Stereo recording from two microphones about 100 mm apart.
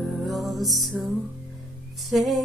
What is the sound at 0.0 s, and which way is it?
Music, centre (ahead or behind).